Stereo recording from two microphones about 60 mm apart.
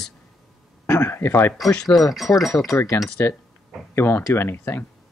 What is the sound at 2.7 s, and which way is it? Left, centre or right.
Speech, left.